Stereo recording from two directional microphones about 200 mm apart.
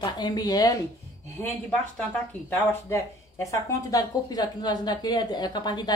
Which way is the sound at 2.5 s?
10° left (ahead or behind).